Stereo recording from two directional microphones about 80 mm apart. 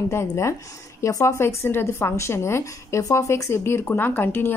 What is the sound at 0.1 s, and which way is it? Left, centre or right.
Speech, left.